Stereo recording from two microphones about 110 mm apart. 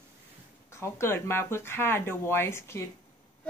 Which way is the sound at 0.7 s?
25° left (ahead or behind).